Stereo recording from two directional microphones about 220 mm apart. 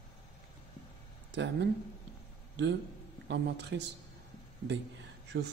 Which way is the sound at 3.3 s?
55° right (ahead or behind).